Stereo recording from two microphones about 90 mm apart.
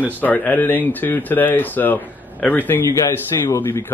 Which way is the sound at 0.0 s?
20° left (ahead or behind).